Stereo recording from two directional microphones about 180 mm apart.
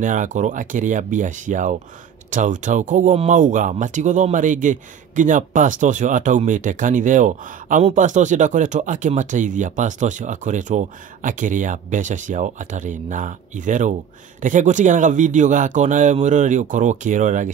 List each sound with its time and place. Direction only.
0.0 s speech: 45° right (ahead or behind)